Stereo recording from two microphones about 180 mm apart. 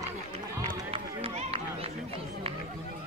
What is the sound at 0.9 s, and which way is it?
Run, 30° right (ahead or behind).